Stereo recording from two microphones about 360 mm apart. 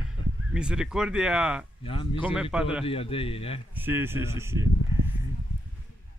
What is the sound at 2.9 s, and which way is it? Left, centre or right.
Speech, centre.